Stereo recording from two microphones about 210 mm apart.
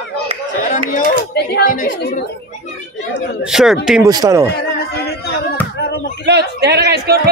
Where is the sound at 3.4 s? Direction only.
Centre (ahead or behind).